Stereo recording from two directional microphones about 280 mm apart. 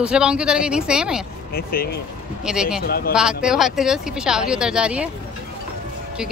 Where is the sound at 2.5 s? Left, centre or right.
Centre.